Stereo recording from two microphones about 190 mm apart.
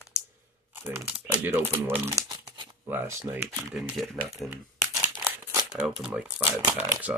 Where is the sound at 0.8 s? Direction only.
5° right (ahead or behind); by 2.7 s 25° right (ahead or behind).